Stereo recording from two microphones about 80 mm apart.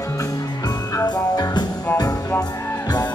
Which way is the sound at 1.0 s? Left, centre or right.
Left.